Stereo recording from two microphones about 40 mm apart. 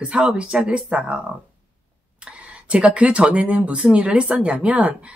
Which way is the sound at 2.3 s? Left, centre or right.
Right.